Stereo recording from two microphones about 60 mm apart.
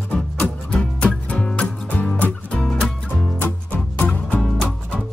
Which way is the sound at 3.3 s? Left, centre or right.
Left.